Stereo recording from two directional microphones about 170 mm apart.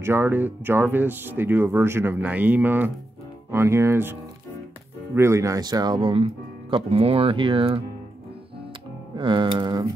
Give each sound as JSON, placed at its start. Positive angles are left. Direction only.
{"t": 0.0, "sound": "speech", "side_deg": -15}
{"t": 9.1, "sound": "speech", "side_deg": -30}